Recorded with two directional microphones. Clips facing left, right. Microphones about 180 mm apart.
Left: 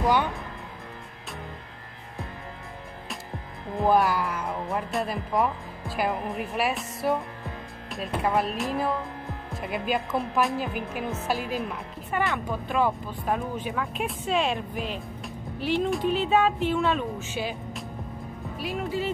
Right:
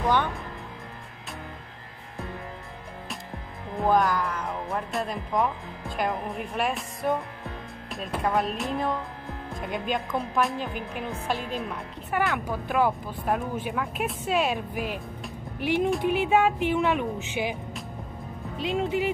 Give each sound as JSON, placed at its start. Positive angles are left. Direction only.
{"t": 0.0, "sound": "music", "side_deg": 10}
{"t": 3.7, "sound": "a woman's voice", "side_deg": 10}
{"t": 18.6, "sound": "speech", "side_deg": -20}